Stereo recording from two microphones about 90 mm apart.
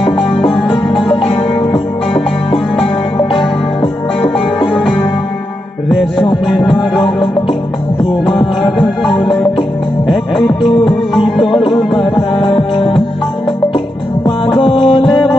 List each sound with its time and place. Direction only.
0.5 s music: centre (ahead or behind)
5.9 s music: centre (ahead or behind)
8.3 s music: centre (ahead or behind)
12.4 s music: 75° left (ahead or behind)
14.6 s music: 90° left